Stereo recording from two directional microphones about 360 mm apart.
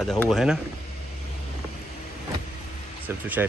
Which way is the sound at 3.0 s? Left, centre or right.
Centre.